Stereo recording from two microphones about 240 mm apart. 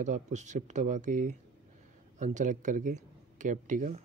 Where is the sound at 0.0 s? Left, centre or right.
Right.